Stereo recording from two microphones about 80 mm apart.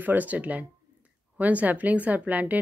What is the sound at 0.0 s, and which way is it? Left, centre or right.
A woman's voice, right.